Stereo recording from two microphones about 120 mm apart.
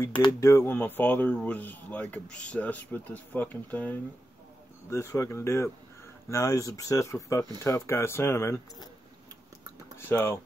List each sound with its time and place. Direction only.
0.2 s speech: 25° left (ahead or behind)
9.9 s speech: 20° left (ahead or behind)